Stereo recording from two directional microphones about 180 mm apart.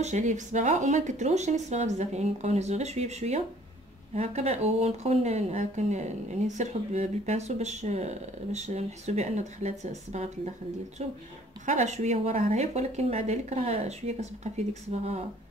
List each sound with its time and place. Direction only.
0.0 s speech: 40° right (ahead or behind)
11.6 s speech: 40° right (ahead or behind)